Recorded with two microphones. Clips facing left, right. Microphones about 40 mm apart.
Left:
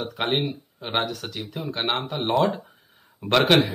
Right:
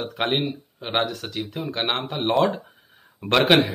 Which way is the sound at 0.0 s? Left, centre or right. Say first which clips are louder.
Right 1 dB; centre.